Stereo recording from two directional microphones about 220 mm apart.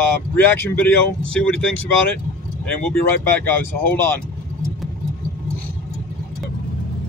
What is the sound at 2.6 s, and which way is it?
Speech, 10° left (ahead or behind).